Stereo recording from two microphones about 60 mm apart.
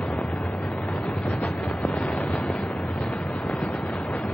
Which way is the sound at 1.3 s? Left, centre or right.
Left.